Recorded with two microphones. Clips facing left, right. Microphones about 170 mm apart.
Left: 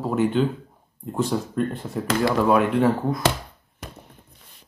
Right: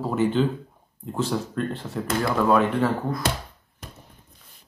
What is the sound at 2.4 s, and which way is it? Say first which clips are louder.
Speech: even; 10° left (ahead or behind).